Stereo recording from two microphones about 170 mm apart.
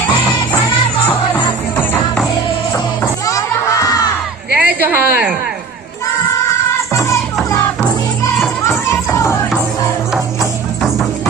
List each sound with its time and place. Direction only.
0.1 s music: 25° left (ahead or behind)
3.0 s music: 20° left (ahead or behind)
4.6 s a sound: 10° right (ahead or behind)
8.6 s children playing: 15° left (ahead or behind)